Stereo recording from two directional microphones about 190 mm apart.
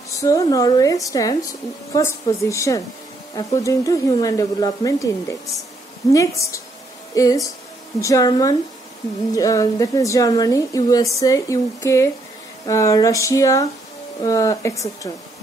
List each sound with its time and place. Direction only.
0.2 s a woman's voice: 20° left (ahead or behind)